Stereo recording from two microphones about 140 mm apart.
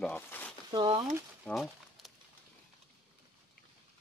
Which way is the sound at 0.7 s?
35° right (ahead or behind).